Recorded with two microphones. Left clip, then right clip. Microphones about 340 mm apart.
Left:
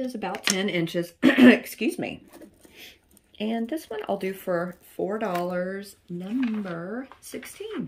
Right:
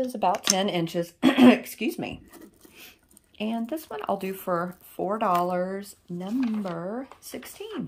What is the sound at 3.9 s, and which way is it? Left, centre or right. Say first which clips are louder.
Speech: right 1 dB; right.